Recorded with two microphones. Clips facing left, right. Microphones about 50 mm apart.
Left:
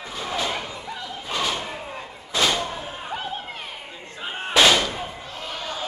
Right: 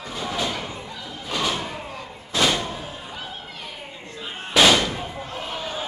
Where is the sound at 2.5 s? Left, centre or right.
Centre.